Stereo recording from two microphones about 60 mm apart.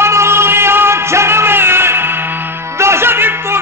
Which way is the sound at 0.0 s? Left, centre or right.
Right.